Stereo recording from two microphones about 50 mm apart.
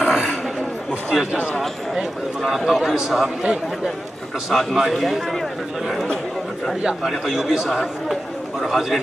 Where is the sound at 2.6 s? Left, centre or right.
Centre.